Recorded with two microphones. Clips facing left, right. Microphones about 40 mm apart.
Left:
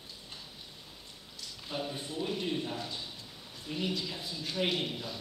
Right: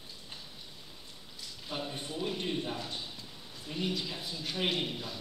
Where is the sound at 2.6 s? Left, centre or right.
Centre.